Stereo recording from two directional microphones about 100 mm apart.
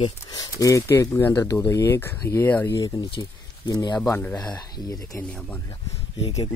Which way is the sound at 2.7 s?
40° left (ahead or behind).